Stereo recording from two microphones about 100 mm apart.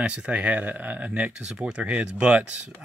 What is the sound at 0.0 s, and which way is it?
Speech, 10° right (ahead or behind).